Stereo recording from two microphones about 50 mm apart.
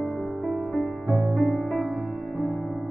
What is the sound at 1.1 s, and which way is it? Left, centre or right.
Music, centre.